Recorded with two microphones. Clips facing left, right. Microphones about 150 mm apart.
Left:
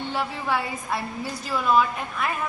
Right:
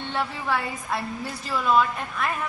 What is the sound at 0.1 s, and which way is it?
A woman's voice, 5° left (ahead or behind).